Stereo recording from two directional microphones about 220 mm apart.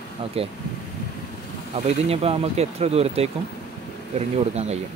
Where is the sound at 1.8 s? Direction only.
30° right (ahead or behind).